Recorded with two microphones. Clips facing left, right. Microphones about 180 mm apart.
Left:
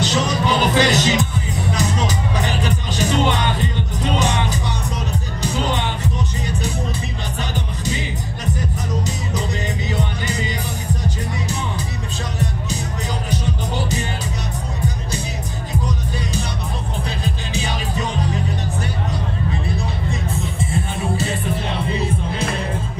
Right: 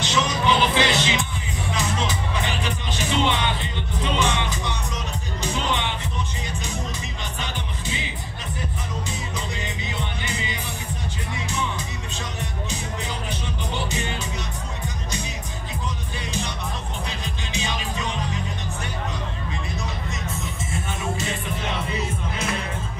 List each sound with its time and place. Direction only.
0.0 s music: 40° left (ahead or behind)
9.9 s music: 40° left (ahead or behind)
13.3 s music: 40° left (ahead or behind)
17.2 s music: 35° left (ahead or behind)
20.1 s music: 35° left (ahead or behind)